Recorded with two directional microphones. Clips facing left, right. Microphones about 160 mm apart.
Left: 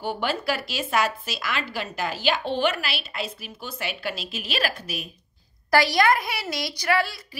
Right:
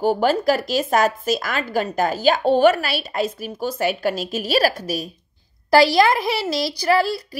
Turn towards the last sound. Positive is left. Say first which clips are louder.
# right 6 dB
turn(degrees=-30)  # may be behind; listen again after turning